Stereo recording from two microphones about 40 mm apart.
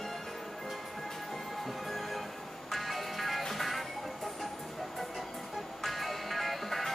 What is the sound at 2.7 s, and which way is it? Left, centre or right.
Music, centre.